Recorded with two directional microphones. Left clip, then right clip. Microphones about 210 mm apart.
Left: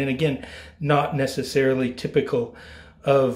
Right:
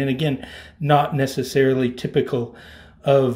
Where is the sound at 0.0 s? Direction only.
20° right (ahead or behind).